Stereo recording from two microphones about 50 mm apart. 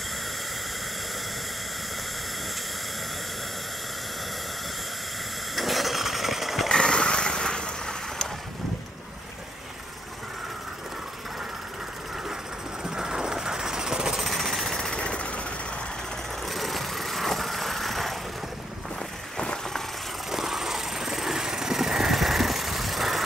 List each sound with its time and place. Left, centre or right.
5.6 s vehicle: centre
6.7 s vehicle: centre
12.8 s jackhammer: centre
14.9 s vehicle: centre
16.4 s vehicle: centre
19.3 s vehicle: centre
20.2 s vehicle: centre